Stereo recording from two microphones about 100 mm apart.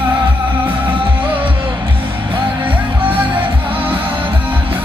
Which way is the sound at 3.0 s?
60° right (ahead or behind).